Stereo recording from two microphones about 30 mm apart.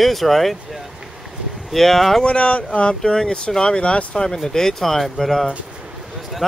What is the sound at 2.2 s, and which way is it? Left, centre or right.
Speech, left.